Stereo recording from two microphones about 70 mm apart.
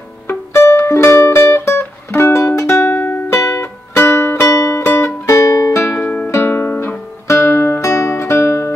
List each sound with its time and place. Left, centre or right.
0.3 s music: left
2.9 s music: left
3.3 s music: left
5.8 s music: left
6.4 s music: left
7.2 s music: left
7.5 s music: left